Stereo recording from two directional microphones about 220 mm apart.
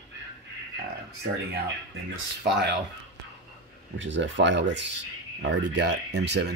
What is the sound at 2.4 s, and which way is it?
Speech, 50° right (ahead or behind).